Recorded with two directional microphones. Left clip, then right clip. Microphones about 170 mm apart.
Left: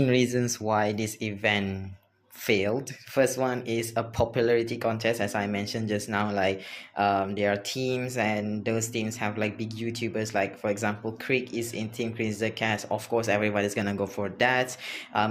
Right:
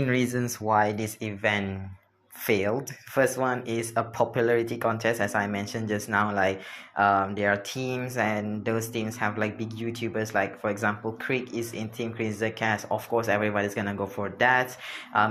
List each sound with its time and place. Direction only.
0.0 s speech: 15° left (ahead or behind)